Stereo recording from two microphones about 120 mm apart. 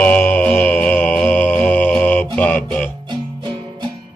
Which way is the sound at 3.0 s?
40° right (ahead or behind).